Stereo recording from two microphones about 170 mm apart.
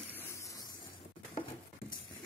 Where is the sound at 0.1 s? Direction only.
20° left (ahead or behind).